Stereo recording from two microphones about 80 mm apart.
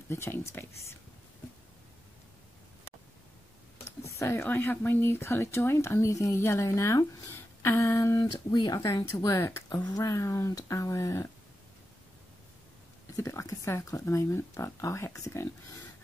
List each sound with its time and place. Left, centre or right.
0.1 s speech: left
4.1 s speech: left
8.5 s speech: left
8.9 s speech: left
13.1 s speech: left